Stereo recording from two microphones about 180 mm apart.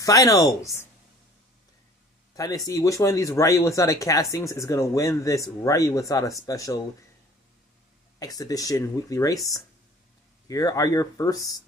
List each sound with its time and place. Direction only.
0.0 s speech: 20° left (ahead or behind)
2.3 s speech: 20° left (ahead or behind)
8.2 s speech: 20° left (ahead or behind)